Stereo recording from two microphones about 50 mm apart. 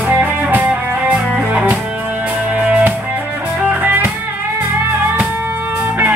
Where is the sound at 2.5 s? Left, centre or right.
Right.